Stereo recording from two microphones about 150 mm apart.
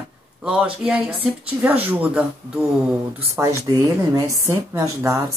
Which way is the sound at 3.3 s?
20° right (ahead or behind).